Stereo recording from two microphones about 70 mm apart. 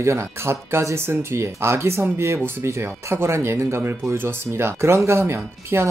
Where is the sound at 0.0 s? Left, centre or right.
Right.